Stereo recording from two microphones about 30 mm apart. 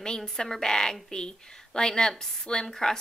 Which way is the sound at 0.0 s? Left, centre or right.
Left.